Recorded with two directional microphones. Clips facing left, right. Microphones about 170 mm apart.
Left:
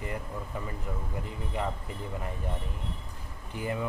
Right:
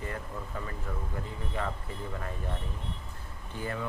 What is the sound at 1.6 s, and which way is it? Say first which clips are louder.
Speech: left 2 dB; 15° left (ahead or behind).